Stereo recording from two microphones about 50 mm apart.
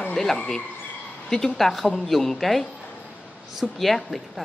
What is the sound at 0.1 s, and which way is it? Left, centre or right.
A woman's voice, centre.